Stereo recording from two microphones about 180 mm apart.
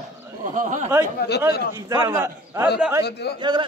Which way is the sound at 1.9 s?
15° right (ahead or behind).